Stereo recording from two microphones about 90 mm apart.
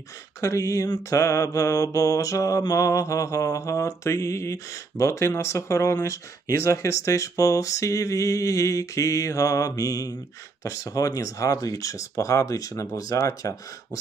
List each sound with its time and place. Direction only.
0.4 s mantra: 35° left (ahead or behind)